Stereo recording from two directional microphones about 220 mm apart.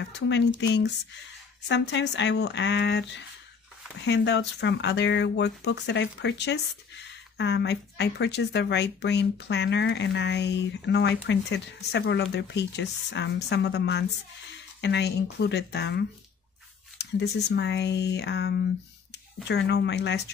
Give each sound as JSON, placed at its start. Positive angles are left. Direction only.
{"t": 0.3, "sound": "speech", "side_deg": 55}